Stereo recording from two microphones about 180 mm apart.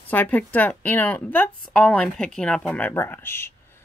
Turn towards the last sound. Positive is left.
turn(degrees=15)  # may be behind; listen again after turning